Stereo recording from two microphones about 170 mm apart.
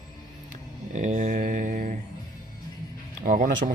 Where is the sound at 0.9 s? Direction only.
45° right (ahead or behind).